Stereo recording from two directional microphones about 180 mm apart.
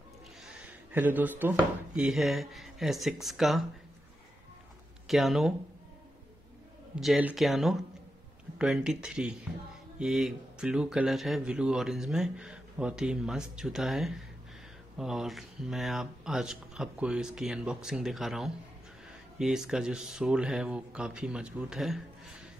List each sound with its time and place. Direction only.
0.4 s a sound: 10° right (ahead or behind)
2.0 s speech: centre (ahead or behind)
5.0 s speech: centre (ahead or behind)
7.0 s speech: 5° right (ahead or behind)